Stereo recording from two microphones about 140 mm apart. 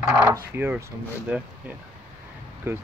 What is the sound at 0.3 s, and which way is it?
Speech, 15° right (ahead or behind).